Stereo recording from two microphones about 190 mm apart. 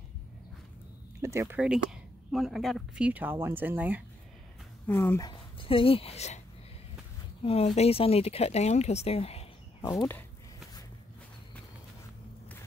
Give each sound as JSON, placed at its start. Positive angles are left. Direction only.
{"t": 1.2, "sound": "speech", "side_deg": -15}
{"t": 4.8, "sound": "speech", "side_deg": 10}
{"t": 5.6, "sound": "speech", "side_deg": 30}
{"t": 7.4, "sound": "speech", "side_deg": 35}
{"t": 9.8, "sound": "speech", "side_deg": 15}